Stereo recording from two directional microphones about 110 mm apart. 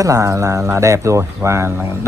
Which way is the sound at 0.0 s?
30° right (ahead or behind).